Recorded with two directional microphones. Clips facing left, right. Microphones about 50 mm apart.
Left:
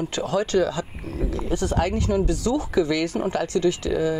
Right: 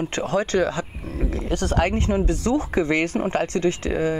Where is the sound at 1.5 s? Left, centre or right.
Right.